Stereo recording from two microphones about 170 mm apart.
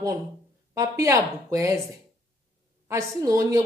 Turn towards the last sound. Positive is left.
turn(degrees=-20)  # may be behind; listen again after turning